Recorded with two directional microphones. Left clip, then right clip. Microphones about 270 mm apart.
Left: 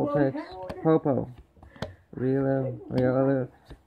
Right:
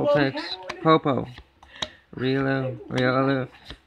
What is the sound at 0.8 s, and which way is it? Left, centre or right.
Speech, centre.